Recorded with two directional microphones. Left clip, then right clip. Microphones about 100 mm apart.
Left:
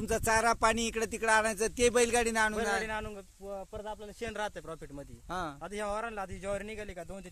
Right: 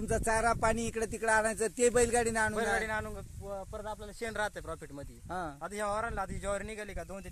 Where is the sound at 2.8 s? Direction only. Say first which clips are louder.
Right 1 dB; 30° left (ahead or behind).